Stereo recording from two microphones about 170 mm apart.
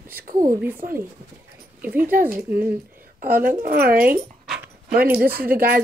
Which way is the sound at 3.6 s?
60° right (ahead or behind).